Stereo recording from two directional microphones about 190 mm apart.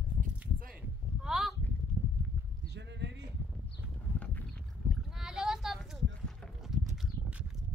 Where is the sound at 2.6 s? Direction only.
65° right (ahead or behind).